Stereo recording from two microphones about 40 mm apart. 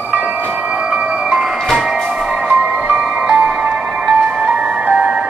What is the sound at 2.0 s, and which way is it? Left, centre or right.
Music, right.